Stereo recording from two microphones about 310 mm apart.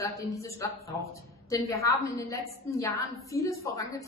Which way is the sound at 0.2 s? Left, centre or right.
Centre.